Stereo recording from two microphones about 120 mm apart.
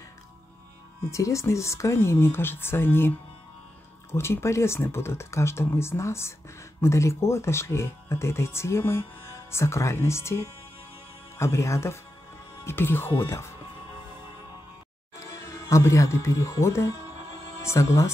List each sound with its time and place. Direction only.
1.1 s speech: 25° left (ahead or behind)
15.1 s speech: 25° left (ahead or behind)